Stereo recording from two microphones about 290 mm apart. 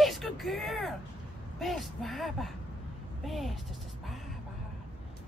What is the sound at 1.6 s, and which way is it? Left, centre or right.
Speech, centre.